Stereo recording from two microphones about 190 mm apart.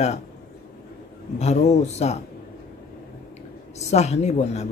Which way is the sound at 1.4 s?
35° left (ahead or behind).